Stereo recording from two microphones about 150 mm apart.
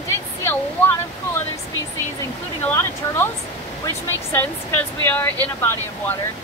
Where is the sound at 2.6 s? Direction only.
15° left (ahead or behind).